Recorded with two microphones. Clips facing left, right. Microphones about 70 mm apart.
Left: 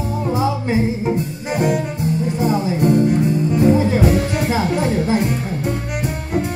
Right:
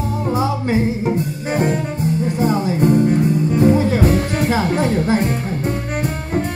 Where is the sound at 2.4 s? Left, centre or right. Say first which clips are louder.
Right 1 dB; right.